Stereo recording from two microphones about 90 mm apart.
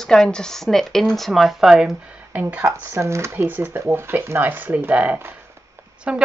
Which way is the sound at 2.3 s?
20° right (ahead or behind).